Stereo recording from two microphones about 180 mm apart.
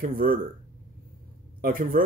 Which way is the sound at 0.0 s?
50° right (ahead or behind).